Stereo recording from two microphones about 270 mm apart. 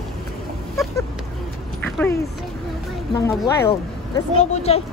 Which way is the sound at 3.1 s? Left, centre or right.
Centre.